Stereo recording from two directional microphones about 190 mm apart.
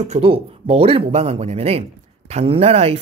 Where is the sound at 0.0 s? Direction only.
30° right (ahead or behind).